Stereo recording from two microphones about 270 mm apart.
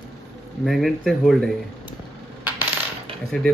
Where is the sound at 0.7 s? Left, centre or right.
Centre.